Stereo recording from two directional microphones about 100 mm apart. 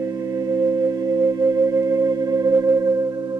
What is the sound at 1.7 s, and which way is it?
Music, 30° right (ahead or behind).